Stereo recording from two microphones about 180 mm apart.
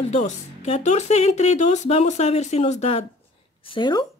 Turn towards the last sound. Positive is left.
turn(degrees=25)  # may be behind; listen again after turning